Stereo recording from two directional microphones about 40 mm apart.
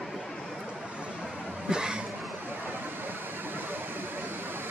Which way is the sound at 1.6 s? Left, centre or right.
Right.